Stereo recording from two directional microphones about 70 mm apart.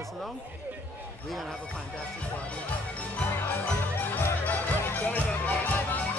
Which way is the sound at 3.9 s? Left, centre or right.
Left.